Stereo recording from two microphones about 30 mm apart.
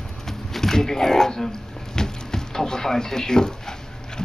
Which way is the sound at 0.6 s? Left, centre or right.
Centre.